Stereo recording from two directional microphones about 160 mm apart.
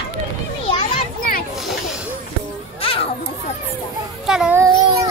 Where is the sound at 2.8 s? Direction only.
35° left (ahead or behind).